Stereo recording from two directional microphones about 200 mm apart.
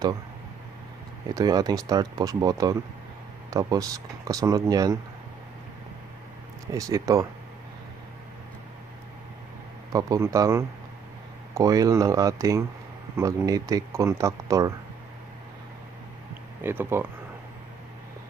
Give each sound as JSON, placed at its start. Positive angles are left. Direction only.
{"t": 1.3, "sound": "speech", "side_deg": -20}
{"t": 6.7, "sound": "speech", "side_deg": -15}
{"t": 9.9, "sound": "speech", "side_deg": -15}
{"t": 16.6, "sound": "speech", "side_deg": -10}